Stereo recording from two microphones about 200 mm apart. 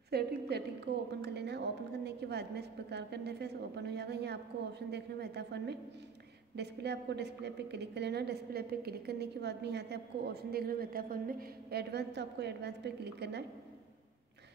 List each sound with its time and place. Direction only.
0.1 s a woman's voice: 55° right (ahead or behind)